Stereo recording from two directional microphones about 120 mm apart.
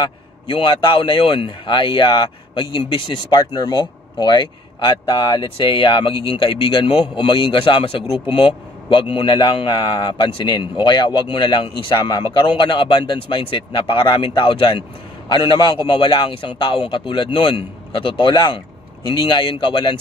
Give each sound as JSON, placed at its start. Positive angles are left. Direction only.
{"t": 0.0, "sound": "a man's voice", "side_deg": 45}